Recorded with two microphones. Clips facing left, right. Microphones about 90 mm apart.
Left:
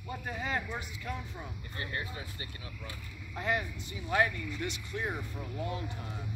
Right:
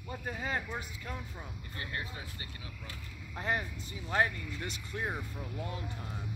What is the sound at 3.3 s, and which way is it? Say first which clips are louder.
Speech: left 2 dB; 35° right (ahead or behind).